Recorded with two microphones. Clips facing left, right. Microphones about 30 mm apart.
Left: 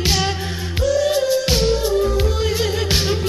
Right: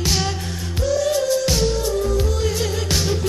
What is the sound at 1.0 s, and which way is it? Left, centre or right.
Music, left.